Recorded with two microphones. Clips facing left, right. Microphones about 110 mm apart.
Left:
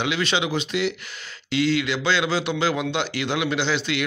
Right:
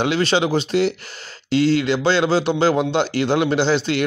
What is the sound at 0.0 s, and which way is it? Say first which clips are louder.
A man's voice: right 6 dB; 35° right (ahead or behind).